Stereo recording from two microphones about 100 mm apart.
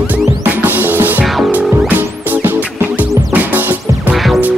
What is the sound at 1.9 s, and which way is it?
Music, 20° right (ahead or behind).